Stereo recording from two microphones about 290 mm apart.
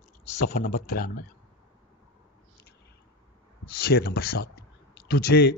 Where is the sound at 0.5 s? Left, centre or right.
Left.